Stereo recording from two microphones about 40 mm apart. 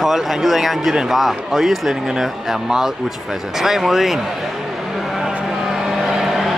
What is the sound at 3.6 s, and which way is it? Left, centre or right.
Speech, centre.